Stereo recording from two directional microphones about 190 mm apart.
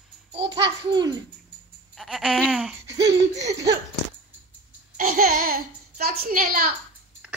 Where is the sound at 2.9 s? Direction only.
65° right (ahead or behind).